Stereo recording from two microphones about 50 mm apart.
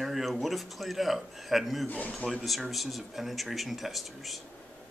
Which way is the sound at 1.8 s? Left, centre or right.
Left.